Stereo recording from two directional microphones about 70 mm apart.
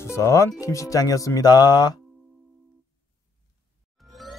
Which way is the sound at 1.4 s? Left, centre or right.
Left.